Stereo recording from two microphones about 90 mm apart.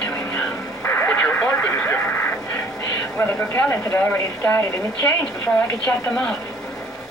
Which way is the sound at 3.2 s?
25° left (ahead or behind).